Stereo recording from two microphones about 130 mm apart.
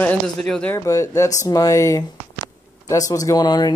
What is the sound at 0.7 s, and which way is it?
Speech, 25° left (ahead or behind).